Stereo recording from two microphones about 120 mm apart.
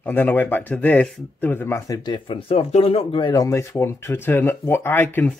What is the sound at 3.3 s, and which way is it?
Speech, 30° left (ahead or behind).